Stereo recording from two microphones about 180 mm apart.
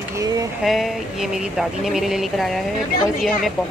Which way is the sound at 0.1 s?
20° right (ahead or behind).